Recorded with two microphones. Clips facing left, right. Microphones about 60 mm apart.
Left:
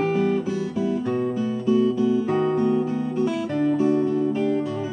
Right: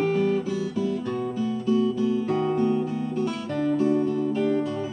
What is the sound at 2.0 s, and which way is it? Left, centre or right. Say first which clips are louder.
Guitar: left 3 dB; centre.